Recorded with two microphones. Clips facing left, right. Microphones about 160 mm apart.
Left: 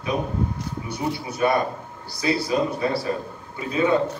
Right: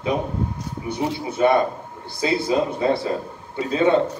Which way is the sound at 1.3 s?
25° right (ahead or behind).